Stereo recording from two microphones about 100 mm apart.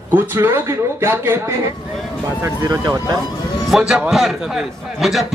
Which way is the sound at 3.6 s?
5° right (ahead or behind).